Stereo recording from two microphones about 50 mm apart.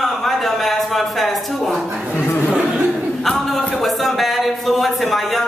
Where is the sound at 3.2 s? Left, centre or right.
Centre.